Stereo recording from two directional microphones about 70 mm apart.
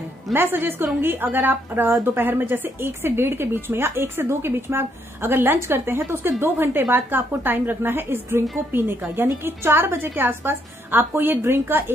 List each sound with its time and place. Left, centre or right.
0.3 s speech: right